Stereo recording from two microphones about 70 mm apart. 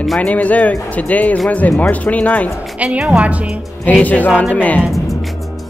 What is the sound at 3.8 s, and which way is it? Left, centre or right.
Speech, left.